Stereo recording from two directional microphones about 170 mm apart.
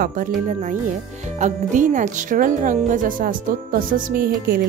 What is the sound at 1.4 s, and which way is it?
Speech, 45° right (ahead or behind).